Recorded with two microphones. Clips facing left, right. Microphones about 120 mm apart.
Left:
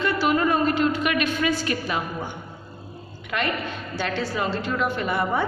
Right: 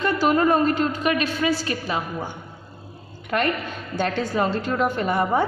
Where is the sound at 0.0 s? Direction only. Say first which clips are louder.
Right 2 dB; 40° right (ahead or behind).